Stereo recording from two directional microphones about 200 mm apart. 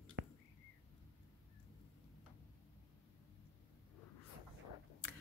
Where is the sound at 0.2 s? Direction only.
65° right (ahead or behind).